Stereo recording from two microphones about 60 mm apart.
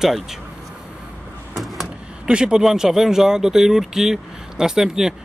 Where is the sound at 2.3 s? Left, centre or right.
Centre.